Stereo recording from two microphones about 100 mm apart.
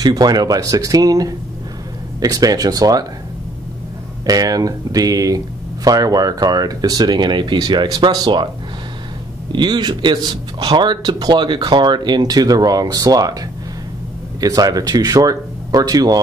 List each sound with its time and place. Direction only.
0.0 s speech: 40° right (ahead or behind)
4.3 s a man's voice: 40° right (ahead or behind)
9.5 s a man's voice: 50° right (ahead or behind)
14.4 s speech: 40° right (ahead or behind)